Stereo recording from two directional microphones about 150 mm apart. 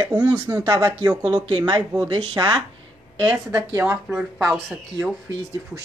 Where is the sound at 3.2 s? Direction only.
15° right (ahead or behind).